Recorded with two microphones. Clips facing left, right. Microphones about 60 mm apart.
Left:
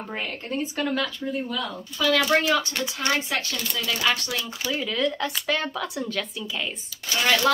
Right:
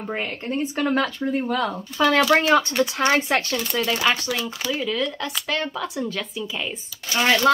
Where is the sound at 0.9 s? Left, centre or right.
Right.